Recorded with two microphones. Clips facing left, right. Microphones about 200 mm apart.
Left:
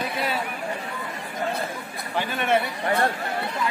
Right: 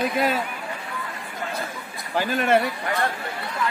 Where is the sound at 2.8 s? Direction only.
35° left (ahead or behind).